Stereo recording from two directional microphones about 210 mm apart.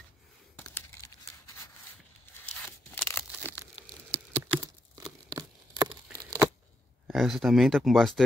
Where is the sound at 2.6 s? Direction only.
10° left (ahead or behind).